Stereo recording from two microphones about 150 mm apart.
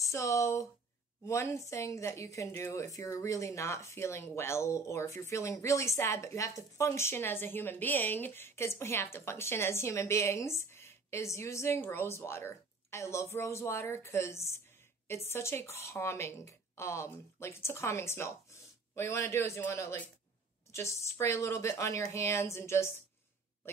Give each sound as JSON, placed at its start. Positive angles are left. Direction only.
{"t": 0.0, "sound": "a woman's voice", "side_deg": 20}